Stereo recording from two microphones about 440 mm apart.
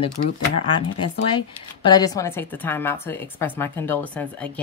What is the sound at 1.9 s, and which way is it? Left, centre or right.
Speech, centre.